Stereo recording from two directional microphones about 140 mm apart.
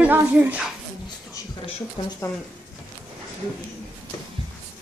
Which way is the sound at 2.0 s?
40° left (ahead or behind).